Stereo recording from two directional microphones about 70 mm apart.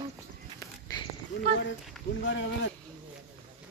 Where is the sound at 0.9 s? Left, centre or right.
Left.